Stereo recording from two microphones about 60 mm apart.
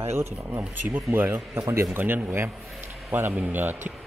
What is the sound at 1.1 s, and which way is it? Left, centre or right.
Speech, right.